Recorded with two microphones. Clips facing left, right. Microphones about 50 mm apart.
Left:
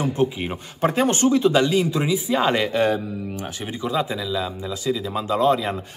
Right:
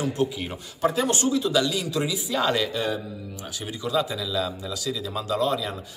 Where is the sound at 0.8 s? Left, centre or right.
Left.